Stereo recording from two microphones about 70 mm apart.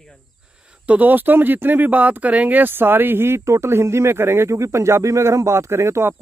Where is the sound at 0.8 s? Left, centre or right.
Right.